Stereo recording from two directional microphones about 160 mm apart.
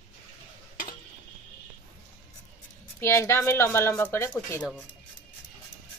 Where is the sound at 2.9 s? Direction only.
15° left (ahead or behind).